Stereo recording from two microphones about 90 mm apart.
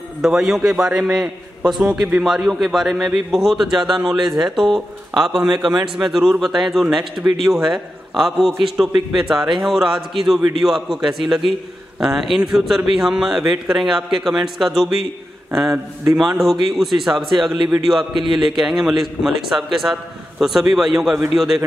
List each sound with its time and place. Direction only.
0.2 s a man's voice: 5° right (ahead or behind)
15.7 s a man's voice: 30° right (ahead or behind)
16.2 s a man's voice: centre (ahead or behind)